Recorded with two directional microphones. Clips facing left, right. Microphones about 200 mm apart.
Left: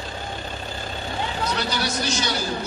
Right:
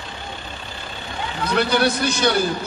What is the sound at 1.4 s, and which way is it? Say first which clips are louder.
A man's voice: right 10 dB; 55° right (ahead or behind).